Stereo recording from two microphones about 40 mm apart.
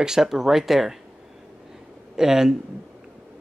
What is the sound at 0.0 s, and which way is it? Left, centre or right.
Speech, centre.